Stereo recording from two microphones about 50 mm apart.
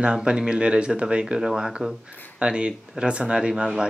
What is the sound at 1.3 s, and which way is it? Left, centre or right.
A man's voice, centre.